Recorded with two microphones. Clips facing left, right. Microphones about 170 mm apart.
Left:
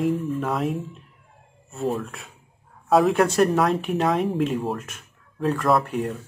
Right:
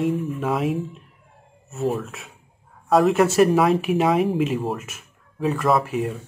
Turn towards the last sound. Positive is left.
turn(degrees=0)  # may be behind; listen again after turning